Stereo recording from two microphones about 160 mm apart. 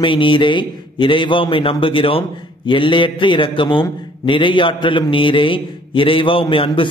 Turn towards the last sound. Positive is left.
turn(degrees=35)  # may be behind; listen again after turning